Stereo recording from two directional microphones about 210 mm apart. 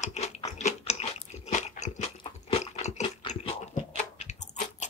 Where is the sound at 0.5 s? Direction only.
30° left (ahead or behind).